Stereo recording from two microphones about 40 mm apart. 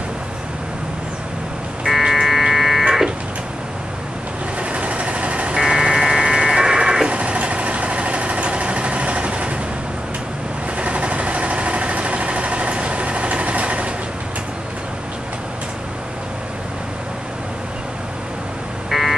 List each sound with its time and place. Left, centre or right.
1.9 s buzzer: centre
4.6 s vehicle: right
5.6 s vehicle: centre
7.1 s vehicle: right
10.8 s vehicle: right
18.9 s a sound: centre